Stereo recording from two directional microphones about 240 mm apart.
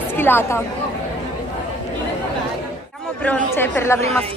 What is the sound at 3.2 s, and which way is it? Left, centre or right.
A woman's voice, centre.